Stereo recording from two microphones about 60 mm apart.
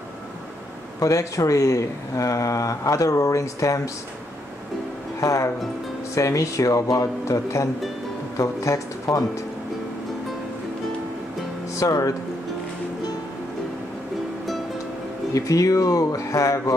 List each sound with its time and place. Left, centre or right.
0.9 s speech: left
5.2 s speech: left
11.7 s speech: left
15.3 s speech: left